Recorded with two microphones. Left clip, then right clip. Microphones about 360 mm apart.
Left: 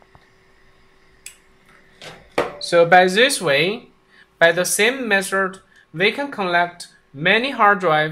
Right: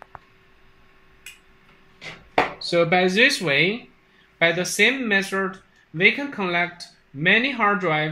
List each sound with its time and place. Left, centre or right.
2.6 s speech: left